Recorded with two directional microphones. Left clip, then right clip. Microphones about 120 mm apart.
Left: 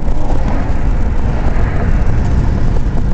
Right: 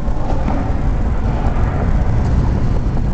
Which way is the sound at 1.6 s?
35° left (ahead or behind).